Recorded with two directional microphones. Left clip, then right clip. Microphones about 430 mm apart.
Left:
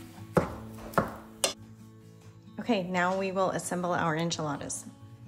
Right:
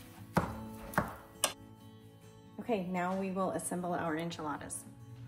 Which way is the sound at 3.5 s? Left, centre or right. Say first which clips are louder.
Left 6 dB; centre.